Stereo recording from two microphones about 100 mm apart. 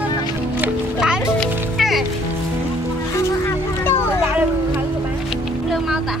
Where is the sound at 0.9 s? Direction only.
5° right (ahead or behind).